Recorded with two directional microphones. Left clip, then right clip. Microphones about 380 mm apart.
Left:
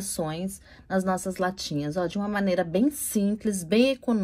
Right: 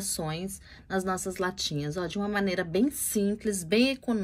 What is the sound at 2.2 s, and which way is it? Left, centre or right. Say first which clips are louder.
Speech: left 1 dB; left.